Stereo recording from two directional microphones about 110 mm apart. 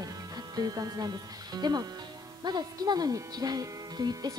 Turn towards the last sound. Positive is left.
turn(degrees=-35)  # may be behind; listen again after turning